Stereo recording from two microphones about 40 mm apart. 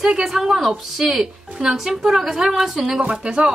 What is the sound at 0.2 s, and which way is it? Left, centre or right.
A woman's voice, centre.